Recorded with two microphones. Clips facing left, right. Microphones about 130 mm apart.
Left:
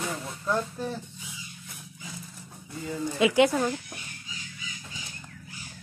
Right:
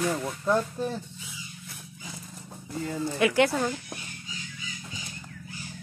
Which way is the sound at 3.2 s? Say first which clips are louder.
Left 2 dB; 15° left (ahead or behind).